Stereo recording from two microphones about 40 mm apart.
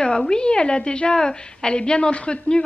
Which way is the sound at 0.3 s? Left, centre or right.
Left.